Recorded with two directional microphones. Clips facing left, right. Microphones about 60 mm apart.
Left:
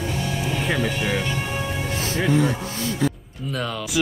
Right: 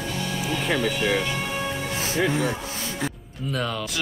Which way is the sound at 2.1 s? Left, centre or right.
Centre.